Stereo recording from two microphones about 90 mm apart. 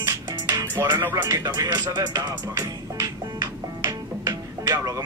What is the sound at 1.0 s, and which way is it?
Speech, 30° right (ahead or behind).